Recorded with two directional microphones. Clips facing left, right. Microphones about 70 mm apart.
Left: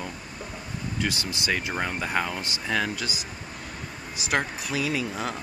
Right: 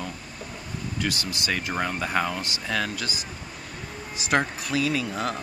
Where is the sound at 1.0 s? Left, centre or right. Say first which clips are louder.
Even; left.